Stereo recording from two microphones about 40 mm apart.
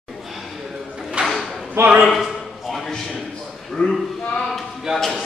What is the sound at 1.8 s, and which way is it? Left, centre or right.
Speech, right.